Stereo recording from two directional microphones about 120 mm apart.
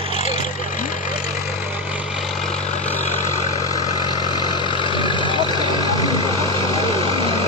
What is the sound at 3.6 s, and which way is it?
Vehicle, 30° left (ahead or behind).